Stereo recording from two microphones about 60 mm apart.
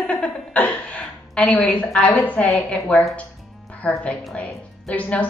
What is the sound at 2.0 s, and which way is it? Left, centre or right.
A woman's voice, left.